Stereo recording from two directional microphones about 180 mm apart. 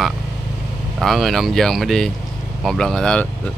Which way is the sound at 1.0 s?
Centre (ahead or behind).